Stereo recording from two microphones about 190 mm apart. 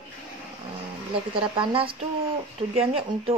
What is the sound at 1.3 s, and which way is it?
A woman's voice, 30° right (ahead or behind).